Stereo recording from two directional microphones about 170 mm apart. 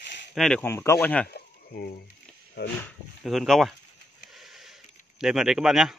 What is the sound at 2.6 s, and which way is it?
Speech, 75° left (ahead or behind).